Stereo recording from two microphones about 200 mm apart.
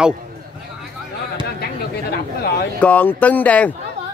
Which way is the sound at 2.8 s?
5° left (ahead or behind).